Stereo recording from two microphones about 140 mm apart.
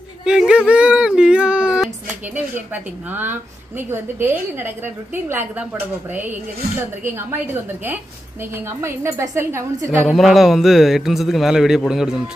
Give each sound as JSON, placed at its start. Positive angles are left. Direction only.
{"t": 0.2, "sound": "a woman's voice", "side_deg": -5}
{"t": 8.8, "sound": "a woman's voice", "side_deg": -20}
{"t": 9.8, "sound": "a man's voice", "side_deg": 0}